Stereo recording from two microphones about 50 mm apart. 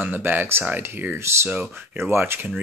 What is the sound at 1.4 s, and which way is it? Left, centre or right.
Speech, right.